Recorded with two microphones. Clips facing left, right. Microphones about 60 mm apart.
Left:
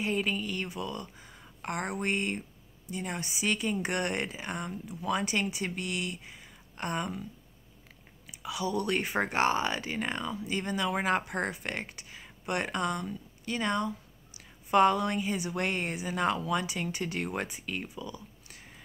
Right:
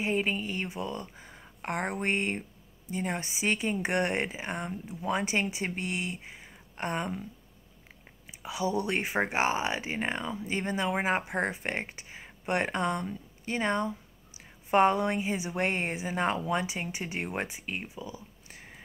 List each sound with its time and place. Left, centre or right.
0.0 s speech: right
8.3 s speech: right
9.9 s speech: right